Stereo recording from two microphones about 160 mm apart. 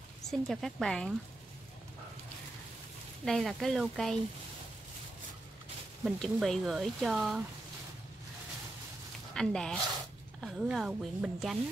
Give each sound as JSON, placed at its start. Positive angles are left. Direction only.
{"t": 0.3, "sound": "speech", "side_deg": 0}
{"t": 3.3, "sound": "speech", "side_deg": 0}
{"t": 6.0, "sound": "speech", "side_deg": 0}
{"t": 9.3, "sound": "speech", "side_deg": 5}